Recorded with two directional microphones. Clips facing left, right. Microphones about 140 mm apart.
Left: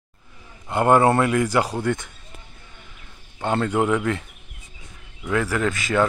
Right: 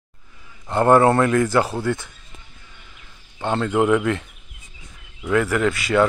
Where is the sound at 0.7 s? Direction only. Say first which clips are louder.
Right 2 dB; 15° left (ahead or behind).